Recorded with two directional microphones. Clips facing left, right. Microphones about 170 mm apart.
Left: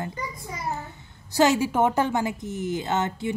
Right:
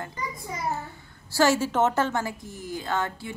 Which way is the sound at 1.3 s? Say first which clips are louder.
Left 2 dB; 20° left (ahead or behind).